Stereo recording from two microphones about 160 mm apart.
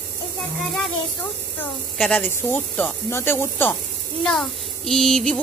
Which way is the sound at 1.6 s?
10° left (ahead or behind).